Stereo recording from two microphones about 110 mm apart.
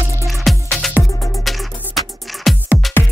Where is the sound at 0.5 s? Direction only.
5° left (ahead or behind).